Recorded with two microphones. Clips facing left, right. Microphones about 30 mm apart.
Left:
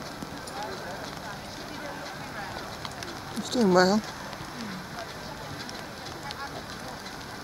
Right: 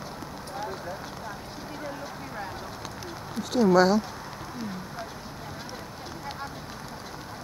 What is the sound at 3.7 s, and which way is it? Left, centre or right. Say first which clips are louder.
Speech: right 1 dB; centre.